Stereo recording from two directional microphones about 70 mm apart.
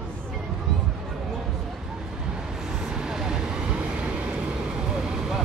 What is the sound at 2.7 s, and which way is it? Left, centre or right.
Vehicle, centre.